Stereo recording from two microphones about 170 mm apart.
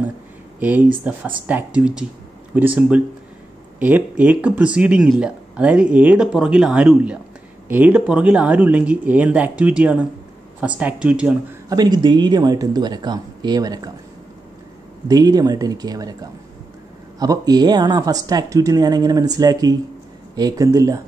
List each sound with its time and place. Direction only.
0.6 s speech: 10° right (ahead or behind)
11.7 s speech: 25° right (ahead or behind)
15.0 s speech: 20° right (ahead or behind)